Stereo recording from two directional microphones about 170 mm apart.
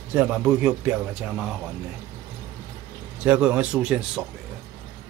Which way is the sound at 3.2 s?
5° right (ahead or behind).